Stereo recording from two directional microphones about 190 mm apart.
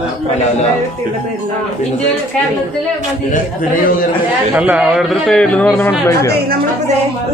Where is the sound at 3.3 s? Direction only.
50° left (ahead or behind).